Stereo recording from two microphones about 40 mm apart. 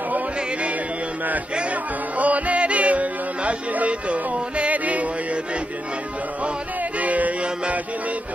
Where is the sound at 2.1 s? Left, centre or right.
Right.